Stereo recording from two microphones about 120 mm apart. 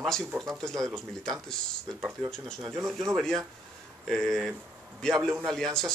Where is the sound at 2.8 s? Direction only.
25° right (ahead or behind).